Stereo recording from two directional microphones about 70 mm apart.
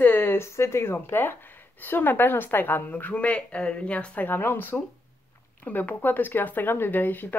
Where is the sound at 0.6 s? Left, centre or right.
Left.